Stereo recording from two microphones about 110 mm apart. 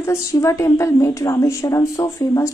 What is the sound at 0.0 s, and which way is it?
Speech, 25° left (ahead or behind).